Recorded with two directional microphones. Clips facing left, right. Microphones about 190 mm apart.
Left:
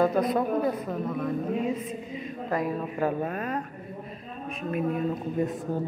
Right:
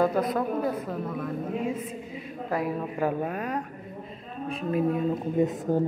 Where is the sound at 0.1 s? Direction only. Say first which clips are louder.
Left 2 dB; centre (ahead or behind).